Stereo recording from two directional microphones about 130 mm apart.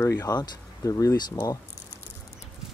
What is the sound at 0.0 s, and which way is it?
Speech, 25° left (ahead or behind).